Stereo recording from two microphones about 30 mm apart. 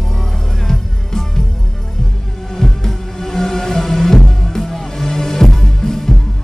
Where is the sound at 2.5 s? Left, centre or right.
Centre.